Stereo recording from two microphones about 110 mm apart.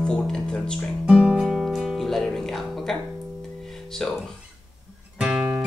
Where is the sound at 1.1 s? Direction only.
Centre (ahead or behind).